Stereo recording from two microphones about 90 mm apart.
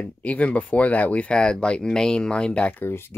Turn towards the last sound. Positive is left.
turn(degrees=25)  # may be behind; listen again after turning